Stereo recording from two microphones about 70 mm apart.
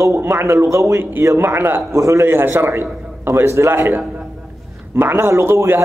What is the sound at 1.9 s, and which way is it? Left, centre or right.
A man's voice, right.